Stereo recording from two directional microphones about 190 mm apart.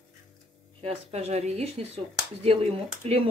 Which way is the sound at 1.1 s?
35° right (ahead or behind).